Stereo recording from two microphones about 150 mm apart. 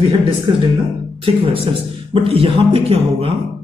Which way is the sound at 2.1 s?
40° right (ahead or behind).